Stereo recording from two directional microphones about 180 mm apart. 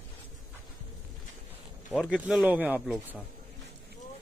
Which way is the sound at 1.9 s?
5° right (ahead or behind).